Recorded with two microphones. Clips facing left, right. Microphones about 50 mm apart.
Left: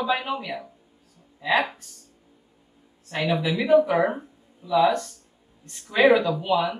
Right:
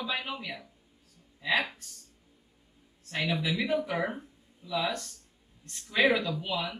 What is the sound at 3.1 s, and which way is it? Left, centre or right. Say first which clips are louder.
Speech: left 6 dB; centre.